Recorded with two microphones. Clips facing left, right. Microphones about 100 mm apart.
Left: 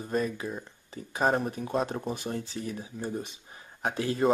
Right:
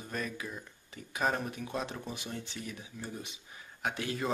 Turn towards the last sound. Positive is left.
turn(degrees=35)  # may be behind; listen again after turning